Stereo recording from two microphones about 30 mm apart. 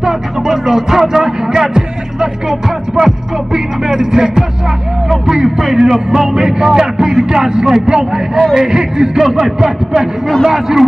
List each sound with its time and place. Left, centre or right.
0.0 s music: centre
3.0 s music: centre
5.2 s a man's voice: centre